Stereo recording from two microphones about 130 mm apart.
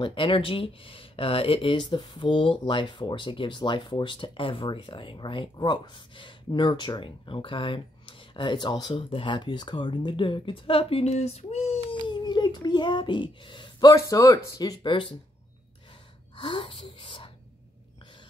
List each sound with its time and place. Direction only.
0.0 s speech: 40° left (ahead or behind)
12.1 s a child's voice: 35° left (ahead or behind)
16.3 s speech: 40° left (ahead or behind)